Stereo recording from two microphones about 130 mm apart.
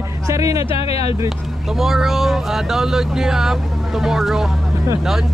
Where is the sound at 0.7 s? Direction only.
50° left (ahead or behind).